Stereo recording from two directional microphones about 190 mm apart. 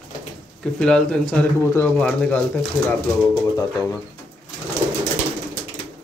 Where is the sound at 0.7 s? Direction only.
5° left (ahead or behind).